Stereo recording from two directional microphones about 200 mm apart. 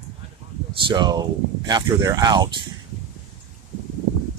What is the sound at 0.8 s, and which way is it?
Speech, 20° right (ahead or behind).